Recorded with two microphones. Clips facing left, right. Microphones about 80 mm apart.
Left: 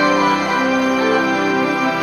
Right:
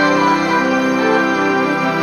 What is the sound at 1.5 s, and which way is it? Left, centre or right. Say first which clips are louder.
Music: right 1 dB; right.